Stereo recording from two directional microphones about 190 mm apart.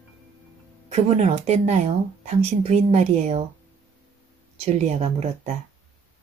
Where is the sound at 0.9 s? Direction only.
35° right (ahead or behind).